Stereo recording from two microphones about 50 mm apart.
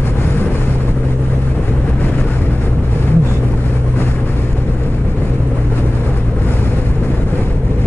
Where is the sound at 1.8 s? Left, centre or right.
Left.